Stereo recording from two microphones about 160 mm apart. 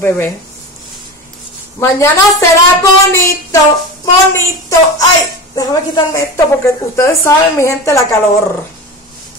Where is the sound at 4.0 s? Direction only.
20° left (ahead or behind).